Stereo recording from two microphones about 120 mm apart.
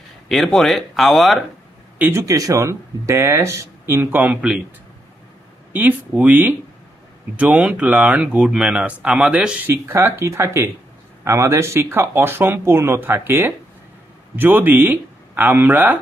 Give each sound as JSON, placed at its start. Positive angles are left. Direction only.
{"t": 0.3, "sound": "speech", "side_deg": 0}
{"t": 2.0, "sound": "speech", "side_deg": -20}
{"t": 5.7, "sound": "speech", "side_deg": -15}